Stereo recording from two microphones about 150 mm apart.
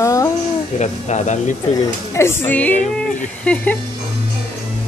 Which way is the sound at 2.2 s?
15° left (ahead or behind).